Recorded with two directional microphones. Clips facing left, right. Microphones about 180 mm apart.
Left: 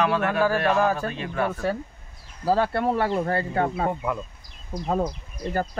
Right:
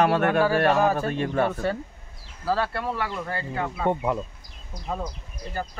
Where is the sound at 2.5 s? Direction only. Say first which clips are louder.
Left 4 dB; 20° left (ahead or behind); by 3.9 s 40° left (ahead or behind).